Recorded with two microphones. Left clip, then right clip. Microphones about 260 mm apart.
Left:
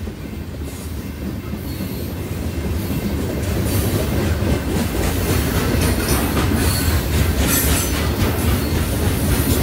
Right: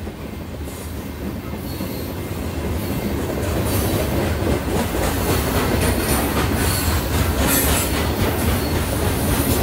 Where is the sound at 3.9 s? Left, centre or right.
Right.